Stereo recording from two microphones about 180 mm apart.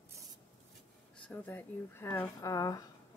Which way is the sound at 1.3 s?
10° left (ahead or behind).